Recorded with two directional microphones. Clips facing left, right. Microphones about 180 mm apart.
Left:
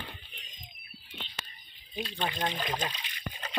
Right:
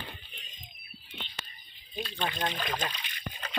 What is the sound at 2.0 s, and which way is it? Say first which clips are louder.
Speech: even; 15° left (ahead or behind).